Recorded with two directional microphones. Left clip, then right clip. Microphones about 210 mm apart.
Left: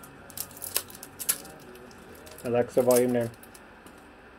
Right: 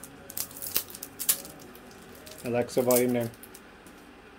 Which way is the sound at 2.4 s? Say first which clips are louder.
Left 3 dB; 15° right (ahead or behind).